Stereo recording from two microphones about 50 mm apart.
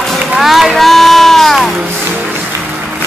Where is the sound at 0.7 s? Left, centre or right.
Centre.